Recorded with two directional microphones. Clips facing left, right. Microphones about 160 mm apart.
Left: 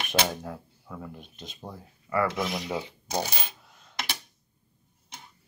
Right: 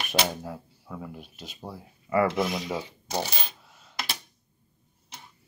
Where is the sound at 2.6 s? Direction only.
10° left (ahead or behind).